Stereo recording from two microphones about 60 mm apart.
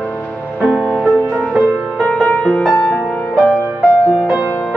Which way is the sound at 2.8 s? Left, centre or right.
Centre.